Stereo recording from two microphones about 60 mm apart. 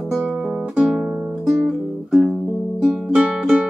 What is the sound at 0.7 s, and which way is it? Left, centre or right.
Music, centre.